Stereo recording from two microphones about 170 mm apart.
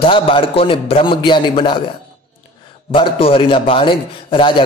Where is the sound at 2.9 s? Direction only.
30° left (ahead or behind).